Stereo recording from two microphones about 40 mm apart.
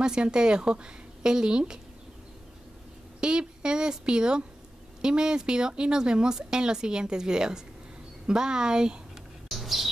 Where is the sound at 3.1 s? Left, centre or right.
Right.